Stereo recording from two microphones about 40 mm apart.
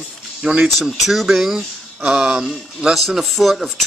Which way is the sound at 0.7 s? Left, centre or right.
Centre.